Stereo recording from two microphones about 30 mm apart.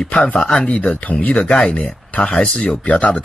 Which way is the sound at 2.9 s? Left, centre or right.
Left.